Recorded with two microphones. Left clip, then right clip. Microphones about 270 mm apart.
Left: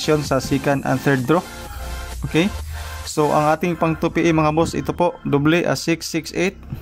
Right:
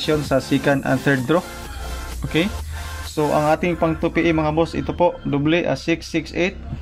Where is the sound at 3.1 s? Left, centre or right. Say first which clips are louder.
Left 1 dB; centre.